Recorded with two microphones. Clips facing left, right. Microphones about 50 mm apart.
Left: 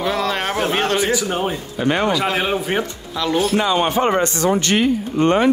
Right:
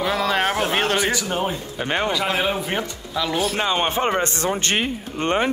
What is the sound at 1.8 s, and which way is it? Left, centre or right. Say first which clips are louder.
Speech: left 5 dB; centre.